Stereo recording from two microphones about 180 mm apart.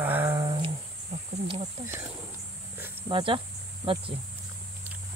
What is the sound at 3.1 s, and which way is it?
Speech, 30° right (ahead or behind).